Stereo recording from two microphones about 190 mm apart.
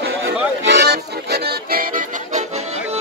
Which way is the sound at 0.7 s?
60° right (ahead or behind).